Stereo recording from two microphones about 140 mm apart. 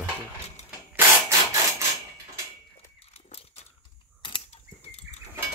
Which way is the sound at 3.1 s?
50° left (ahead or behind).